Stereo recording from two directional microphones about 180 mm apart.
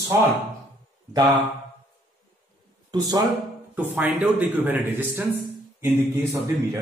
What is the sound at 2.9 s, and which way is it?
Speech, 20° right (ahead or behind).